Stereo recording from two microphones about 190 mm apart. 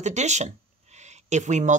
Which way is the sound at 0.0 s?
40° right (ahead or behind).